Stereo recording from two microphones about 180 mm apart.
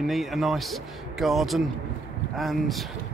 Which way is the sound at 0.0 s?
Centre (ahead or behind).